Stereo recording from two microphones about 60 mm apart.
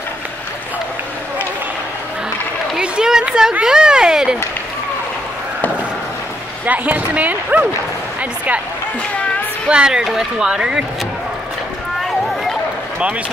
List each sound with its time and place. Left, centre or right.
2.8 s run: centre
3.6 s speech: centre
6.6 s speech: right
9.7 s speech: centre